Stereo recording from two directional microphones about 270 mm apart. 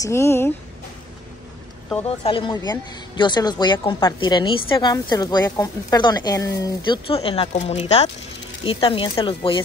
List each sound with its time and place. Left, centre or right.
0.0 s speech: centre
2.0 s speech: centre